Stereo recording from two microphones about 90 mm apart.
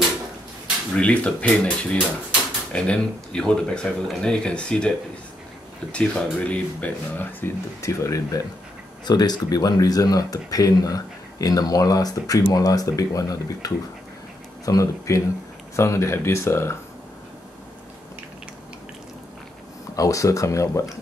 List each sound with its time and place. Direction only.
0.9 s speech: 10° left (ahead or behind)
7.8 s speech: 35° left (ahead or behind)
9.0 s speech: 50° left (ahead or behind); by 16.7 s 30° left (ahead or behind)
20.0 s speech: 40° left (ahead or behind)